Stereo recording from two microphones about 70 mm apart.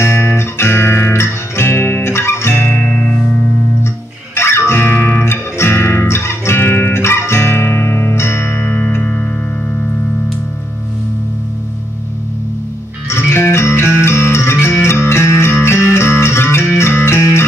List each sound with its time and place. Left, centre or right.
0.0 s music: left
2.9 s music: centre
4.4 s music: left
13.1 s music: left